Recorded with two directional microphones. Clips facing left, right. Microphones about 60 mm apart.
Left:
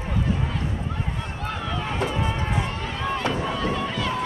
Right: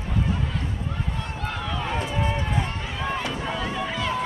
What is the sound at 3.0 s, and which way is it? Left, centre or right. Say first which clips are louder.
Run: left 3 dB; centre.